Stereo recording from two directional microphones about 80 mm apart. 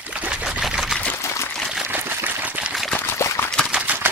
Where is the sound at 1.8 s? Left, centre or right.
Right.